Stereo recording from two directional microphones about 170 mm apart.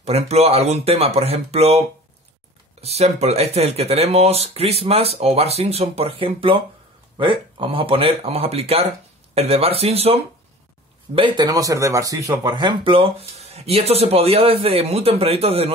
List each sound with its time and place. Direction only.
0.0 s speech: 40° right (ahead or behind)
11.1 s speech: 25° right (ahead or behind)